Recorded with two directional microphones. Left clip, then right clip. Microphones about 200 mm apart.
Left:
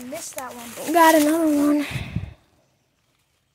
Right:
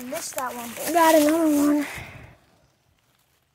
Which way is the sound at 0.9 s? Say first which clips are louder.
Left 2 dB; 20° left (ahead or behind).